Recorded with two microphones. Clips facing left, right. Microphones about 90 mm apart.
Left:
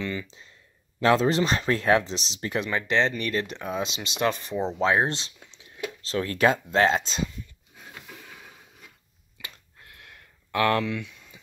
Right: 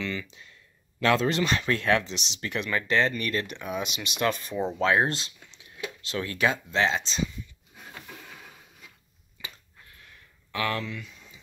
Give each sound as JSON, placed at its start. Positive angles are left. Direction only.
{"t": 0.0, "sound": "speech", "side_deg": 20}
{"t": 0.3, "sound": "speech", "side_deg": 30}
{"t": 2.7, "sound": "speech", "side_deg": 25}
{"t": 6.0, "sound": "speech", "side_deg": 40}
{"t": 7.8, "sound": "a sound", "side_deg": 10}
{"t": 9.4, "sound": "a sound", "side_deg": 70}